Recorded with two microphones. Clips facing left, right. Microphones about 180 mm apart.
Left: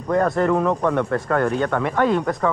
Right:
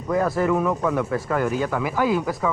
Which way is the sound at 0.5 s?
35° left (ahead or behind).